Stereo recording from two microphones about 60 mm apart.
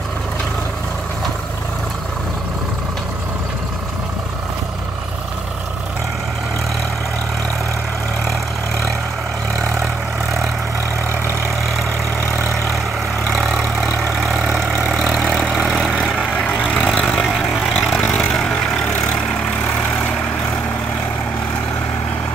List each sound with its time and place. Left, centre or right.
13.6 s vehicle: centre
16.8 s vehicle: left
17.3 s vehicle: centre